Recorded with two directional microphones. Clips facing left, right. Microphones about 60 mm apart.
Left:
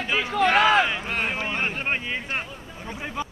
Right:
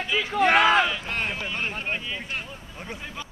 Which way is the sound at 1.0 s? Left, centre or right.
Centre.